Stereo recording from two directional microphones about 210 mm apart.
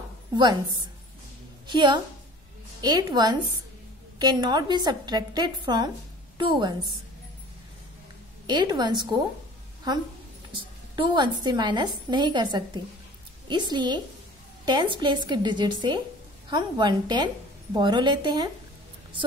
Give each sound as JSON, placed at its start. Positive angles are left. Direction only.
{"t": 1.7, "sound": "a woman's voice", "side_deg": -20}
{"t": 8.5, "sound": "a woman's voice", "side_deg": -20}